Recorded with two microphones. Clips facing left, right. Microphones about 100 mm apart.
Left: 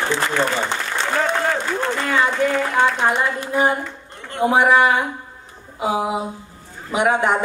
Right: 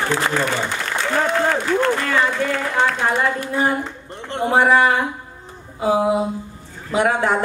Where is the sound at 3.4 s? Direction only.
20° left (ahead or behind).